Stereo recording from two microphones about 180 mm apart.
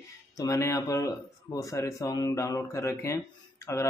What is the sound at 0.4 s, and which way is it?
Speech, 15° left (ahead or behind).